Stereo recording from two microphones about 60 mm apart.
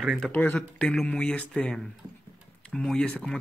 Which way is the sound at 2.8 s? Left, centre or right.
Centre.